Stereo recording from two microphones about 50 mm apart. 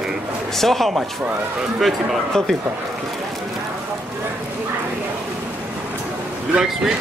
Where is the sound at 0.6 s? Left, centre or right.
Centre.